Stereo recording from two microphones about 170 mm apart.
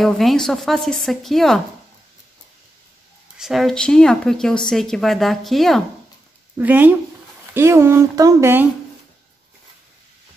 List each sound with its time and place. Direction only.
0.0 s speech: centre (ahead or behind)
3.3 s speech: centre (ahead or behind)
6.6 s speech: 10° right (ahead or behind)